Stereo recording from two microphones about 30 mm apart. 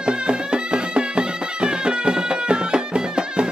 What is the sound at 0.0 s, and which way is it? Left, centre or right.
Music, right.